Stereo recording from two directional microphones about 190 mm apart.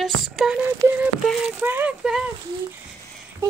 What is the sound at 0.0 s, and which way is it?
Speech, 5° right (ahead or behind).